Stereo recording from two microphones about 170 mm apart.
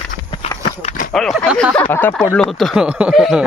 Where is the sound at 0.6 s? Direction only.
45° left (ahead or behind).